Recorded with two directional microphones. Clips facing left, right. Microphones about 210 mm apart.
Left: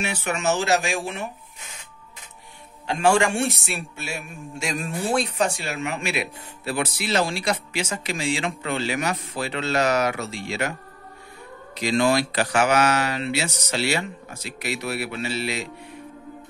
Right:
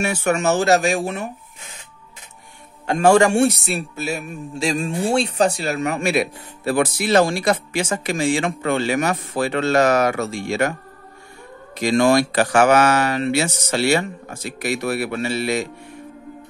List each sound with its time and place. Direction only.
0.0 s speech: 45° right (ahead or behind)
2.9 s speech: 45° right (ahead or behind)
11.8 s speech: 45° right (ahead or behind)